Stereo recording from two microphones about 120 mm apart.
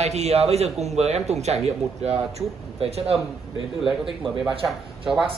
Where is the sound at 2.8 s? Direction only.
55° right (ahead or behind).